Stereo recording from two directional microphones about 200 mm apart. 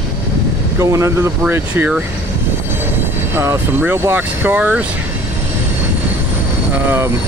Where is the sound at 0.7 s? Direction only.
15° right (ahead or behind).